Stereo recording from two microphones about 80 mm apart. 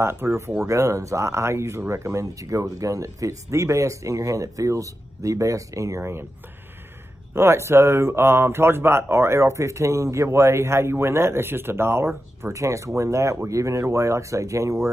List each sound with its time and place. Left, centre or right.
0.0 s speech: right
7.3 s speech: right